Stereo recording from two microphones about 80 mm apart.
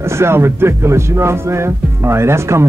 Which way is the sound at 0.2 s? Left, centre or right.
Right.